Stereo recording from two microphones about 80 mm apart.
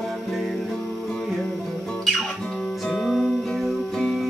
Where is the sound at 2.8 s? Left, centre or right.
Centre.